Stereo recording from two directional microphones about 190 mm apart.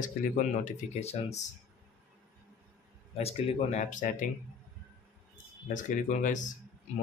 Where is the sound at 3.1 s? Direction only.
35° left (ahead or behind).